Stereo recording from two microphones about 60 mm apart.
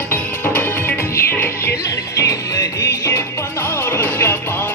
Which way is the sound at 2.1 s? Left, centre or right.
Left.